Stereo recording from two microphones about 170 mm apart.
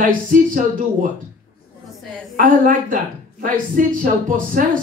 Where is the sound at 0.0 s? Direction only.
50° right (ahead or behind).